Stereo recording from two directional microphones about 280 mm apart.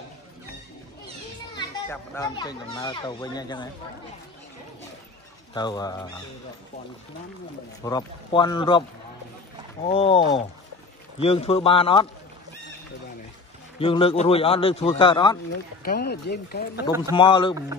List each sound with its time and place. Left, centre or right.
1.6 s a child's voice: centre
5.5 s a child's voice: centre
7.8 s a child's voice: centre
13.7 s speech: centre
15.8 s speech: left
17.1 s a child's voice: centre